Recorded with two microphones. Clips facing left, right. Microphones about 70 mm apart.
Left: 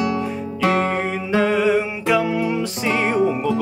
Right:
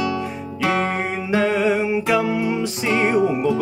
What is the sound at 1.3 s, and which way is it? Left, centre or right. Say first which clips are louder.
Music: left 1 dB; centre.